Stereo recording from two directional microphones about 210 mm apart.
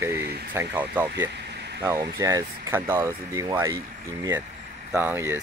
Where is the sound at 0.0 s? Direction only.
10° right (ahead or behind).